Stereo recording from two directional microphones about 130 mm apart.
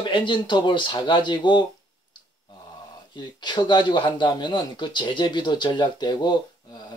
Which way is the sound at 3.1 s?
35° left (ahead or behind).